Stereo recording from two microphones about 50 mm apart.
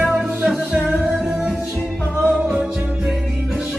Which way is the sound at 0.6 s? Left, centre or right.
Centre.